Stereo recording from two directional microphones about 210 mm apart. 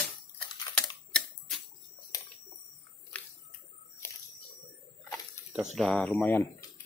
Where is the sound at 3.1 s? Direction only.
5° left (ahead or behind).